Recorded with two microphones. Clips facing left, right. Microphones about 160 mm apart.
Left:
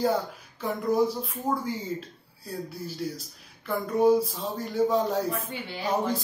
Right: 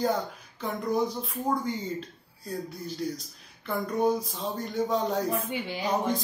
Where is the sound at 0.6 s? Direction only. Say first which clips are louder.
Left 3 dB; 5° left (ahead or behind).